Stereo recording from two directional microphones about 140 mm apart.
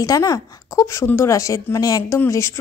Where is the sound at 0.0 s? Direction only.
25° left (ahead or behind).